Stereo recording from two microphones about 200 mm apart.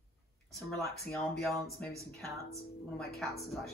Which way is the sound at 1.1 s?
5° left (ahead or behind).